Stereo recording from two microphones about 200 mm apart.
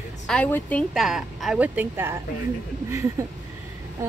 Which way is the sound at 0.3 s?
5° left (ahead or behind).